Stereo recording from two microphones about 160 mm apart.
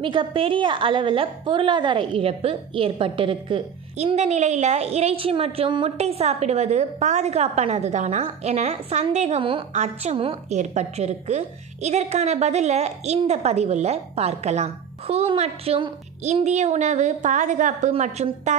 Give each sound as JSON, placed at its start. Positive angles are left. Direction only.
{"t": 0.0, "sound": "a woman's voice", "side_deg": -30}